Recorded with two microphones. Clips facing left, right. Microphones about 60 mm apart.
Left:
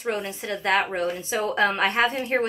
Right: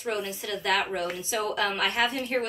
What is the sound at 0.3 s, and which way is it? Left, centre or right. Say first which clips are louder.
A woman's voice: left 5 dB; left.